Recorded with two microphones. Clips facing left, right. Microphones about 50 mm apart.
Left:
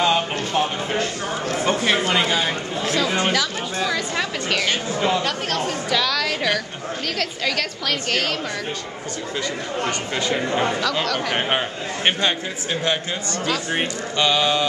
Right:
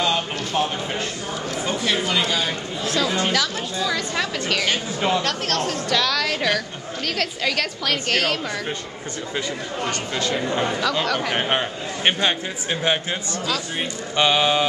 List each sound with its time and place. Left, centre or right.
0.0 s music: centre
1.7 s speech: left
2.8 s a woman's voice: centre
3.1 s speech: centre
3.8 s a woman's voice: centre
9.8 s speech: centre
11.2 s a woman's voice: centre
12.8 s a man's voice: centre